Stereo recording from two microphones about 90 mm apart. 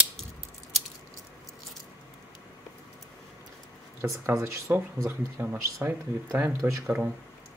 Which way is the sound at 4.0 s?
30° right (ahead or behind).